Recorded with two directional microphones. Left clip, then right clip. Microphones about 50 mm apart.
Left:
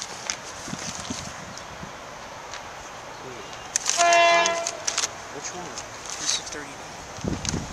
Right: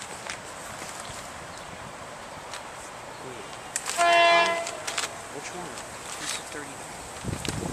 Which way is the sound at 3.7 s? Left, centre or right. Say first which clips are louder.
Left 4 dB; left.